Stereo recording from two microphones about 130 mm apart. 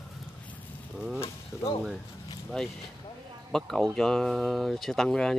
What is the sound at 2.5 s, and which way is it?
Speech, 5° left (ahead or behind).